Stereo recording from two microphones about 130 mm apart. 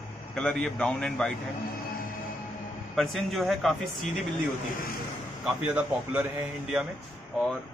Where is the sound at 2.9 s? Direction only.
Centre (ahead or behind).